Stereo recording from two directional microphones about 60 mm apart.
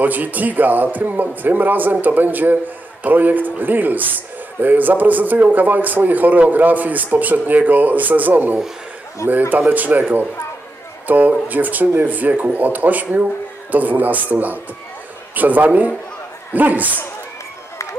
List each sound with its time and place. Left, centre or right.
0.0 s a man's voice: right